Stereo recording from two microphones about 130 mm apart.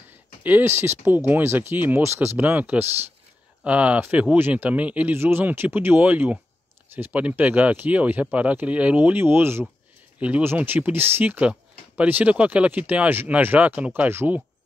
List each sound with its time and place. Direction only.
0.4 s speech: 15° right (ahead or behind)